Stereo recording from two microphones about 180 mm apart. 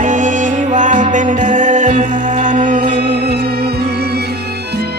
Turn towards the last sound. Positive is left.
turn(degrees=-60)  # may be behind; listen again after turning